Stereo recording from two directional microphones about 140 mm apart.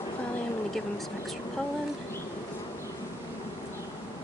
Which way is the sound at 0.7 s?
Centre (ahead or behind).